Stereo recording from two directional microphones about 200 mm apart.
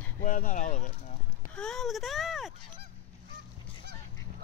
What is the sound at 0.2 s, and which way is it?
Speech, 40° left (ahead or behind).